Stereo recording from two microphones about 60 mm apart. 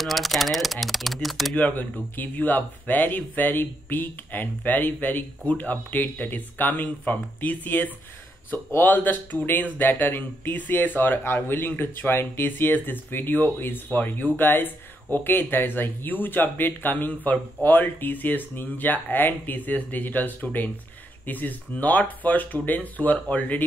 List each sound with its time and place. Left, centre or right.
0.0 s speech: centre
1.5 s speech: left